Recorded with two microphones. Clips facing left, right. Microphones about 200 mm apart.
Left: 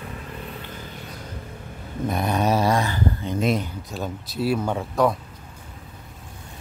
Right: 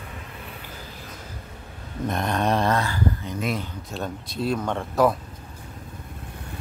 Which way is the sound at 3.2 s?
25° left (ahead or behind).